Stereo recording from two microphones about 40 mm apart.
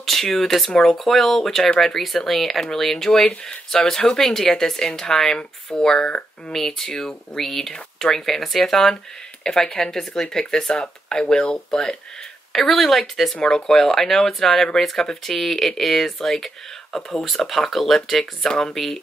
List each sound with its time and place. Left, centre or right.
0.0 s speech: centre
3.1 s speech: centre
6.5 s speech: centre
9.4 s speech: centre
10.4 s speech: left
12.5 s speech: centre